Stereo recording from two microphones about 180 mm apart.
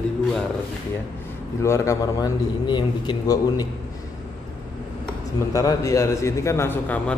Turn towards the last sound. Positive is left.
turn(degrees=10)  # may be behind; listen again after turning